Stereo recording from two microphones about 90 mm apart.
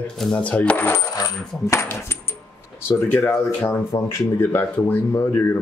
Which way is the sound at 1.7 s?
30° left (ahead or behind).